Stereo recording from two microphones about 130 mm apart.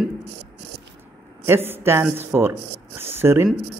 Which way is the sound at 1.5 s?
20° right (ahead or behind).